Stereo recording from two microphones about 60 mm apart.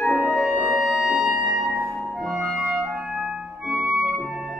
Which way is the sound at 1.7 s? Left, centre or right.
Centre.